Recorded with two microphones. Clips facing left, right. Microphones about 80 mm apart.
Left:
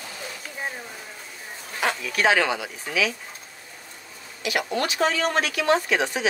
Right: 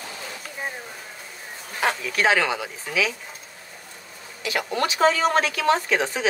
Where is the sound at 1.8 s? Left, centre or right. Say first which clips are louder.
Right 1 dB; right.